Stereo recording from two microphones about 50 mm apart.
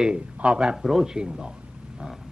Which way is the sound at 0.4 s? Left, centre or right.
Centre.